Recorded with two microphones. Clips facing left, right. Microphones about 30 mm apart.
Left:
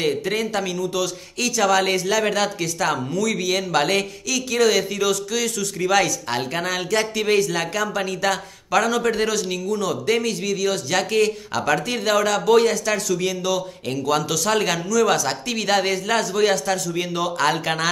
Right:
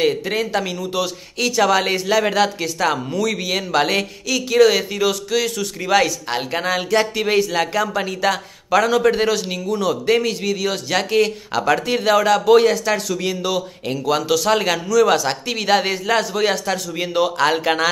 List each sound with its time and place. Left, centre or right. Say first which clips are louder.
0.0 s speech: right 3 dB; centre